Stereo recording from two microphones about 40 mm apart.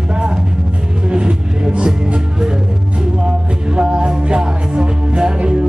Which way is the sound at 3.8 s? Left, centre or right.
Right.